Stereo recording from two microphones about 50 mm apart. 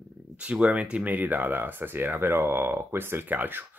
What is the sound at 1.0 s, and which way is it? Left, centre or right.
Speech, right.